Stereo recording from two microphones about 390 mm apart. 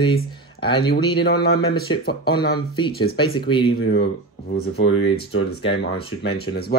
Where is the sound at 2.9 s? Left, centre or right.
Left.